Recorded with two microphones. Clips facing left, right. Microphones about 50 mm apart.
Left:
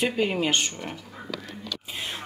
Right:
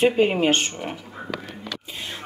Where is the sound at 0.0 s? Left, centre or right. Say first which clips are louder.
Right 6 dB; right.